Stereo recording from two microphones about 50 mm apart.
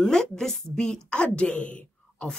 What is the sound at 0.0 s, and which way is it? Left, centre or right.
A woman's voice, centre.